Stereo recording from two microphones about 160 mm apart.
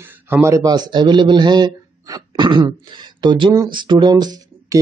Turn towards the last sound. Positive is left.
turn(degrees=-25)  # may be behind; listen again after turning